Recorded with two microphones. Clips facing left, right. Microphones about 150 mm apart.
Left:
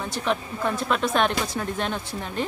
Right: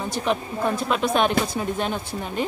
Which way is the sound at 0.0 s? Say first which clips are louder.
Right 2 dB; 10° right (ahead or behind).